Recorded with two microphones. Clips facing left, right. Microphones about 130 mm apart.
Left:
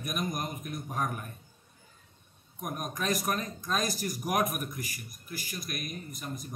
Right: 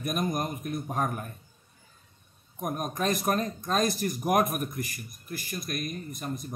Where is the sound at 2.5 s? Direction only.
45° right (ahead or behind).